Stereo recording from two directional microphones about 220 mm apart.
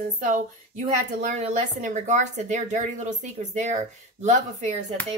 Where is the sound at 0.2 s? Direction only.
35° right (ahead or behind).